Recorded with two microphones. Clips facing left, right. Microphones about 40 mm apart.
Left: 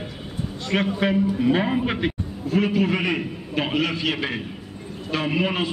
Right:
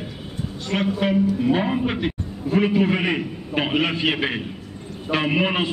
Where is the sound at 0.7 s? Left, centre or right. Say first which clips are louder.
Even; centre.